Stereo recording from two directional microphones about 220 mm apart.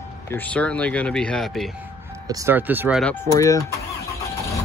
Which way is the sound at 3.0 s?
10° left (ahead or behind).